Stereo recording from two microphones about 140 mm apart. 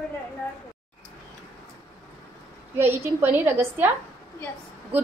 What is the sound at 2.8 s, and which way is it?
A woman's voice, 15° right (ahead or behind).